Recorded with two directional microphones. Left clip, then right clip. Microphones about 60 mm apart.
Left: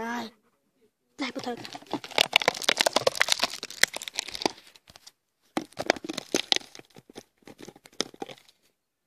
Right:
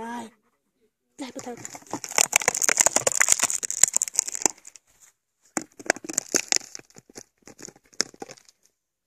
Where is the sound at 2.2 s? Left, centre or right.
Centre.